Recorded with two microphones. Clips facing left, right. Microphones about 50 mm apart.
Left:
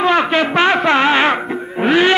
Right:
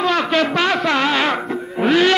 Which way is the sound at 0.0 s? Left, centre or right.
Left.